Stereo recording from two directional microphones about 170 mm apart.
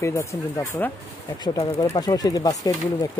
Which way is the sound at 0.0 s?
15° left (ahead or behind).